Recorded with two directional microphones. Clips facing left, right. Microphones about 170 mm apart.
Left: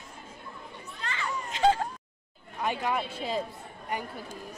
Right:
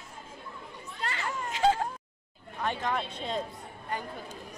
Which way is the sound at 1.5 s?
5° right (ahead or behind).